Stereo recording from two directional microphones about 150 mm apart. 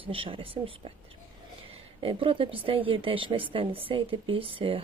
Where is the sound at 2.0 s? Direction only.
35° right (ahead or behind).